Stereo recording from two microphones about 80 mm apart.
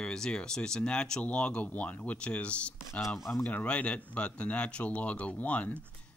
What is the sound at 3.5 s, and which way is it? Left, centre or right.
Speech, centre.